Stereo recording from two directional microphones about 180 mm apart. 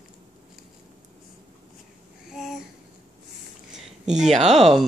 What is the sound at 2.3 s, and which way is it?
Babbling, centre (ahead or behind).